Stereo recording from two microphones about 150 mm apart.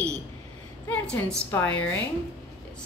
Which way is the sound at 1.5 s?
10° left (ahead or behind).